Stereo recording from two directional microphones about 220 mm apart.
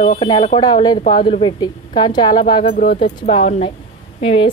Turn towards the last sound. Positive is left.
turn(degrees=25)  # may be behind; listen again after turning